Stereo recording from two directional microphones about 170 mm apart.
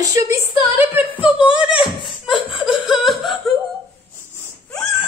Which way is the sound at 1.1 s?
10° right (ahead or behind).